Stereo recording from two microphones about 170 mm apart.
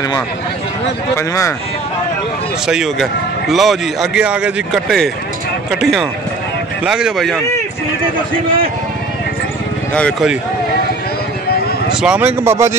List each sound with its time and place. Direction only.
1.1 s speech: 20° left (ahead or behind)
2.6 s a man's voice: centre (ahead or behind)
9.9 s speech: 5° left (ahead or behind)
11.9 s speech: 5° right (ahead or behind)